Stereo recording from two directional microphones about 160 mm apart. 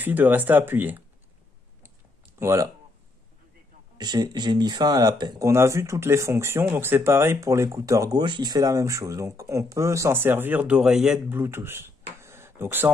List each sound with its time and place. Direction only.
0.0 s speech: 10° right (ahead or behind)
2.3 s speech: 15° right (ahead or behind)
4.0 s speech: 25° right (ahead or behind)
5.5 s speech: 15° right (ahead or behind)
11.3 s tick-tock: 15° right (ahead or behind)